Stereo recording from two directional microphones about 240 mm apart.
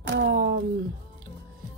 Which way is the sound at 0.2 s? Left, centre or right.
Right.